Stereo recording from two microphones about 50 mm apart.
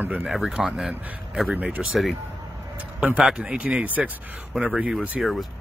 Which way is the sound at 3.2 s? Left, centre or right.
Centre.